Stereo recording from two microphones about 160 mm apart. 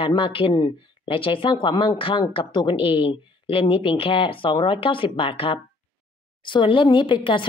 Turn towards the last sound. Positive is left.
turn(degrees=30)  # may be behind; listen again after turning